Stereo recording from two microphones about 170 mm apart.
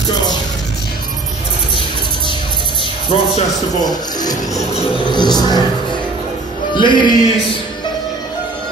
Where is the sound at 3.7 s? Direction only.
25° left (ahead or behind).